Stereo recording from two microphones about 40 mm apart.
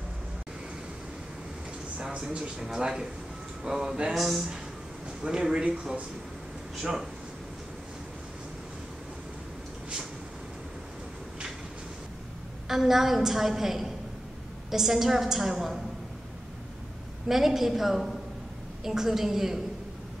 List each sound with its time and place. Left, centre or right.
2.8 s a man's voice: centre
4.1 s speech: centre
5.2 s a man's voice: centre
6.8 s a woman's voice: centre
12.6 s a woman's voice: centre
17.3 s a woman's voice: centre